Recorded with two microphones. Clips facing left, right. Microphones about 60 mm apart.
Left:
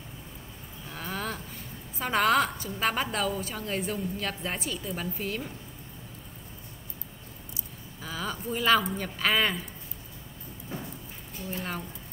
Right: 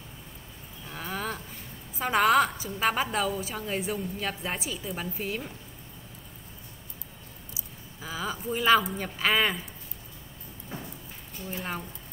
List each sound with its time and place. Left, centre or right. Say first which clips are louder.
0.8 s a sound: right 1 dB; centre
2.0 s a woman's voice: right 2 dB; centre
8.0 s speech: right 1 dB; centre
11.3 s a woman's voice: even; centre